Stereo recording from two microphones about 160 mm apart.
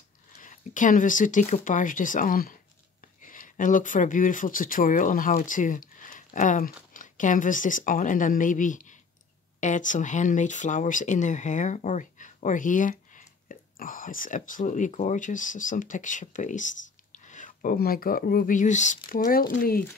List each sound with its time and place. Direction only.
0.4 s speech: 55° left (ahead or behind)
19.0 s speech: 60° left (ahead or behind)